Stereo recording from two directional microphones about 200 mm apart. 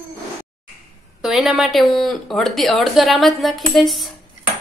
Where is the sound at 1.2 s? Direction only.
Centre (ahead or behind).